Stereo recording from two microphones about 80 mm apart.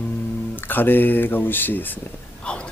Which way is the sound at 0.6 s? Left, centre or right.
Left.